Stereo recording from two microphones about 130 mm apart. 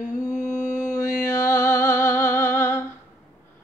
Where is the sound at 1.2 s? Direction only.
20° left (ahead or behind).